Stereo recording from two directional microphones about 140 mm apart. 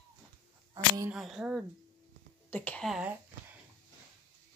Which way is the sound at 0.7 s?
20° right (ahead or behind).